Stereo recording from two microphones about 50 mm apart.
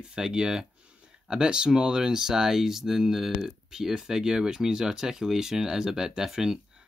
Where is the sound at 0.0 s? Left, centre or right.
Centre.